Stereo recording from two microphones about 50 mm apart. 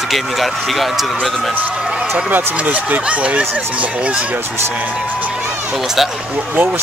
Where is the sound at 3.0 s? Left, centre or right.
Right.